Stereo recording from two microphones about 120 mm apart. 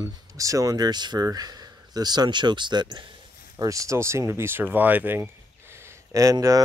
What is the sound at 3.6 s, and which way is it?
Speech, 25° right (ahead or behind).